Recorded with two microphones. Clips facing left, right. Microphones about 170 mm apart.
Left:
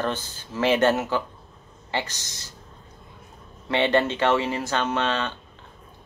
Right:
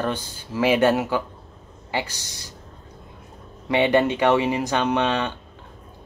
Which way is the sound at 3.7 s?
15° right (ahead or behind).